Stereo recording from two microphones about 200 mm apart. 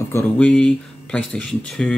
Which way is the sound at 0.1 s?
5° left (ahead or behind).